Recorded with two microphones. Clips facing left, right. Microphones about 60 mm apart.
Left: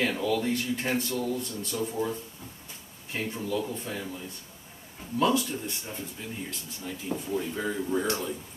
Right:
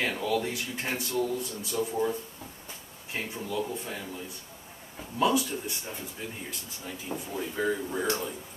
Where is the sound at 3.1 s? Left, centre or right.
Centre.